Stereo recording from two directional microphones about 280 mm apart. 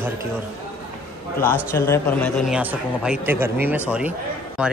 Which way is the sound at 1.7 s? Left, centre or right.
Centre.